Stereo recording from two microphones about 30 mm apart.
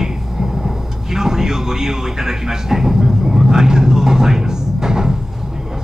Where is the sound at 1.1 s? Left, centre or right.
Centre.